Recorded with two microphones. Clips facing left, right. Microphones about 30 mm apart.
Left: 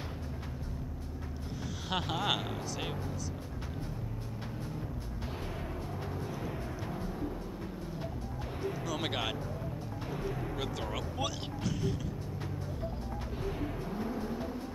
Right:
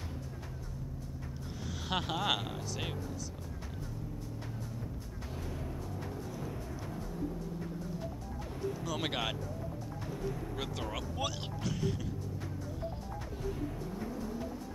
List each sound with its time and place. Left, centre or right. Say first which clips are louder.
1.6 s speech: even; centre
6.4 s music: left 3 dB; left
8.8 s speech: even; centre
10.6 s speech: left 2 dB; centre
13.8 s vehicle: left 3 dB; left